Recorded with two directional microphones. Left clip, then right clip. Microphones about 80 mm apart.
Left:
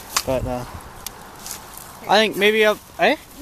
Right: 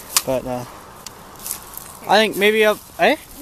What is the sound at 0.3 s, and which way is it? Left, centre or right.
Speech, centre.